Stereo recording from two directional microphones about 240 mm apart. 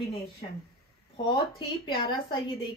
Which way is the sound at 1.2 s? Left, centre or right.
Centre.